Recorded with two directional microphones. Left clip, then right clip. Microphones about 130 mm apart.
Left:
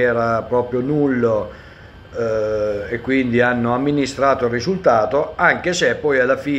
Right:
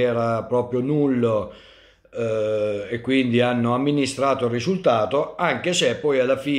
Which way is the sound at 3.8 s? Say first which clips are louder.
Left 3 dB; 30° right (ahead or behind).